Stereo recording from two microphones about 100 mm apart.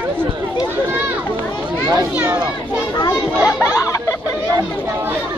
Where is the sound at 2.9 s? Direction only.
40° left (ahead or behind).